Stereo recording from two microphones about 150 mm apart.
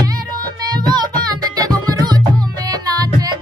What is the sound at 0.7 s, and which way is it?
Music, 30° right (ahead or behind).